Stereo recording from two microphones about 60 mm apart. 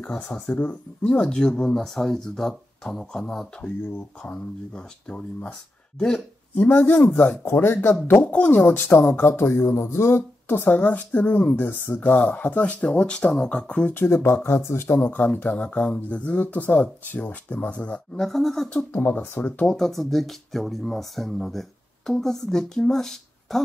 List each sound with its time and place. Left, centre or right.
0.0 s speech: centre
6.5 s speech: left
8.2 s speech: left
8.6 s speech: left; by 13.9 s centre
13.9 s speech: left
15.0 s speech: left
18.1 s speech: centre
18.9 s speech: left
19.6 s speech: centre